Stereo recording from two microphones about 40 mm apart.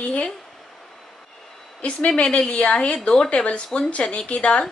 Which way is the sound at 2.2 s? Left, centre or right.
Left.